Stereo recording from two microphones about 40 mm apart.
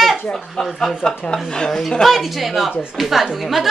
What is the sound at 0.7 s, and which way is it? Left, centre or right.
Speech, centre.